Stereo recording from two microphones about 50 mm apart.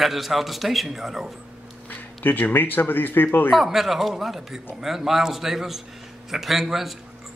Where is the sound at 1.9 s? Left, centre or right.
Left.